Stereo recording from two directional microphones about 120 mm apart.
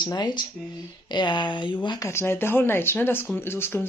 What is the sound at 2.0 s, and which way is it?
Speech, 20° left (ahead or behind).